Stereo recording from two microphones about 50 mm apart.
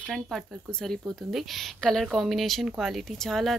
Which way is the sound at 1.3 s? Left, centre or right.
Centre.